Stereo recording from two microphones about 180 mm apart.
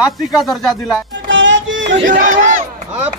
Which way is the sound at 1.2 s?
90° right.